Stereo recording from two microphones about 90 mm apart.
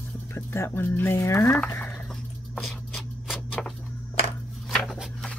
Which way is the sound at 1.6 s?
15° left (ahead or behind).